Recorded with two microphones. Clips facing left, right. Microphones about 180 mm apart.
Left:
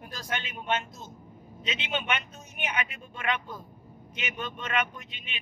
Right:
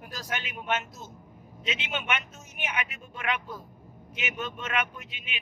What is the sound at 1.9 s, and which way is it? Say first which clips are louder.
Speech: left 2 dB; 35° left (ahead or behind).